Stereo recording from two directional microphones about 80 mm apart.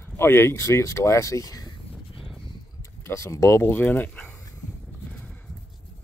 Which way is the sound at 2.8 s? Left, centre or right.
Left.